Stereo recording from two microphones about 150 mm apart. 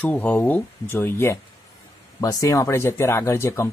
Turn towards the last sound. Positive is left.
turn(degrees=20)  # may be behind; listen again after turning